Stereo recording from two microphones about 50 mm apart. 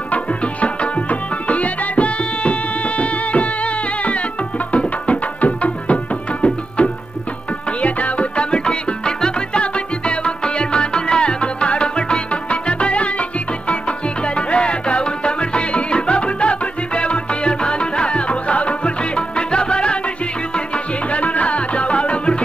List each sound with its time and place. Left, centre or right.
0.1 s music: left
6.8 s tabla: left
7.8 s music: left